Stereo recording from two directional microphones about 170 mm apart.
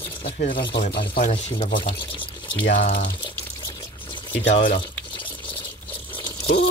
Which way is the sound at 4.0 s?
30° left (ahead or behind).